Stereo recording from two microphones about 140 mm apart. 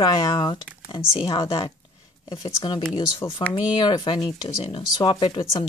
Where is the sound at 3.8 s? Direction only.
35° left (ahead or behind).